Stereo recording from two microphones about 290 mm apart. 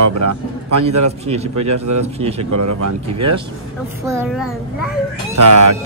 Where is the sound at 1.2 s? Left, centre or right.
Right.